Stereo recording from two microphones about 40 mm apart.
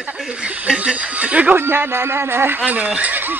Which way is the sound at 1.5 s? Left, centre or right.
Right.